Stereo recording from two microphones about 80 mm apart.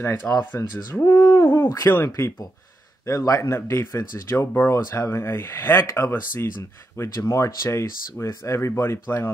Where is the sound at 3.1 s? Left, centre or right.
Left.